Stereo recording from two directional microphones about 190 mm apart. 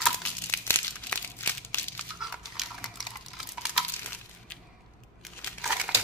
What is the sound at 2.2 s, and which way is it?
Dog, centre (ahead or behind).